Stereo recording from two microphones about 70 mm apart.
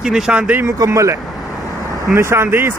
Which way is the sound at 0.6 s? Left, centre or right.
Right.